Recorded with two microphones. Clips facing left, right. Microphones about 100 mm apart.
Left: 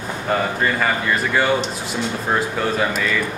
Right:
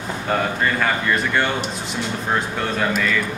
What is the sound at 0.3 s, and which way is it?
Speech, 5° left (ahead or behind).